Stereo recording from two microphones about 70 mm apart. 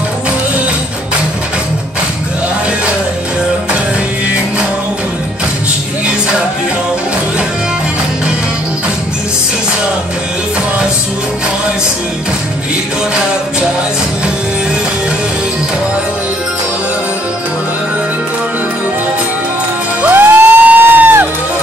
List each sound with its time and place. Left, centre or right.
20.0 s music: right